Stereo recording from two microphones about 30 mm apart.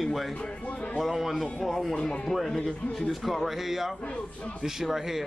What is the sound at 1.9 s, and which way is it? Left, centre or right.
Rub, left.